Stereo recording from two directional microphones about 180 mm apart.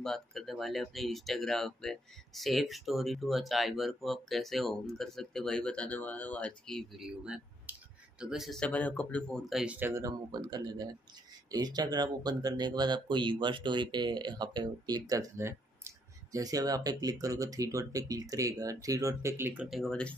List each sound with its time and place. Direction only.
0.0 s speech: 5° left (ahead or behind)